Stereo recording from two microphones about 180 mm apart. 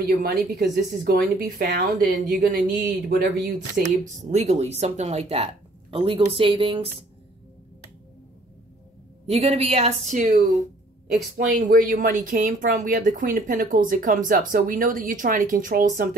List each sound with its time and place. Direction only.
0.1 s a woman's voice: 60° right (ahead or behind)
4.2 s speech: 40° right (ahead or behind)
9.2 s speech: 35° right (ahead or behind)
11.1 s a woman's voice: 50° right (ahead or behind)